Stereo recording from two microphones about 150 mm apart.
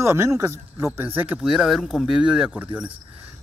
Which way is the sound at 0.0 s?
15° right (ahead or behind).